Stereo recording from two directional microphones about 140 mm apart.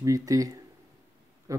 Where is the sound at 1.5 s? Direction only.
25° right (ahead or behind).